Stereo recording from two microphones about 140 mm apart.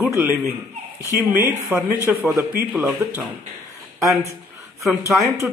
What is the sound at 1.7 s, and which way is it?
Speech, 20° right (ahead or behind).